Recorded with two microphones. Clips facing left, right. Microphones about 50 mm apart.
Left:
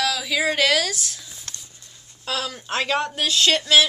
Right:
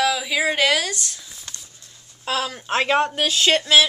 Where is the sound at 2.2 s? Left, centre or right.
Centre.